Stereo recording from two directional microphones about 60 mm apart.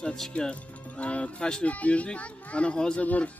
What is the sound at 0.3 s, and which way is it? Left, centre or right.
Speech, centre.